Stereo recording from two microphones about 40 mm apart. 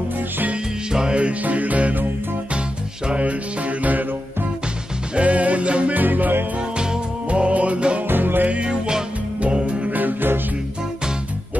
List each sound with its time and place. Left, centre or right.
0.9 s music: right
1.4 s music: right
3.1 s music: right
5.1 s music: right
5.9 s music: right
7.2 s music: right
8.1 s music: right
8.5 s music: right
9.9 s music: right